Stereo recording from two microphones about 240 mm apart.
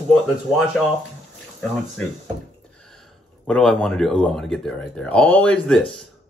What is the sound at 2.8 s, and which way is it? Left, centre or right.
Speech, centre.